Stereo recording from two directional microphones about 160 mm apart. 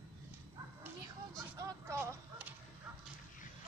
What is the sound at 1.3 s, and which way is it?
Whip, 20° right (ahead or behind).